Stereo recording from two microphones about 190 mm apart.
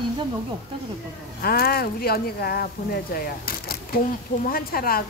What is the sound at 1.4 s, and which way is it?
Speech, 55° left (ahead or behind).